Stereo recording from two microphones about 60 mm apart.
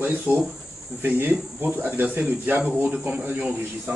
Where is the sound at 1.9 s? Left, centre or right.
Right.